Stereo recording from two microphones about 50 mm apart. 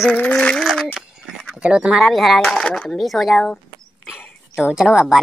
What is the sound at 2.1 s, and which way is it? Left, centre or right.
Speech, centre.